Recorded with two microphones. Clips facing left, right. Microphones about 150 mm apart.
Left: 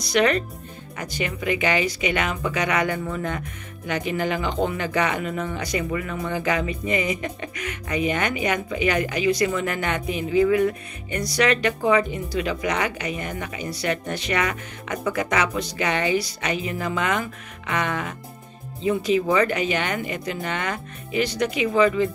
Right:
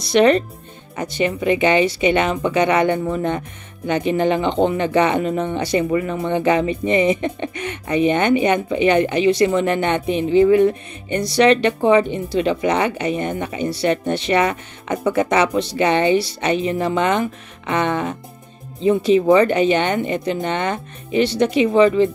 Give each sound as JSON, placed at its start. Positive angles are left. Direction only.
{"t": 0.0, "sound": "speech", "side_deg": -25}